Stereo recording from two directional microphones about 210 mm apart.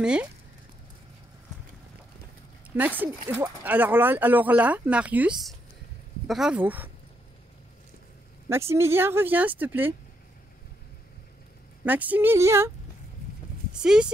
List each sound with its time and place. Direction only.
0.0 s speech: 5° right (ahead or behind)
2.7 s speech: 10° right (ahead or behind)
8.5 s speech: 10° right (ahead or behind)
11.8 s speech: 10° right (ahead or behind)
13.7 s speech: 5° right (ahead or behind)